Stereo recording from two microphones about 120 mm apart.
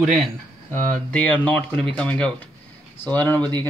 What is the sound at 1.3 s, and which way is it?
A man's voice, 10° left (ahead or behind).